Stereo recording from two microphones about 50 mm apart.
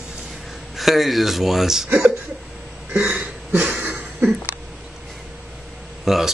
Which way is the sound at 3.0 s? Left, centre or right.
Right.